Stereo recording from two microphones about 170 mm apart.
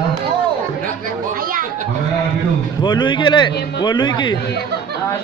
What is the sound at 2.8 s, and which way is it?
A man's voice, 25° left (ahead or behind).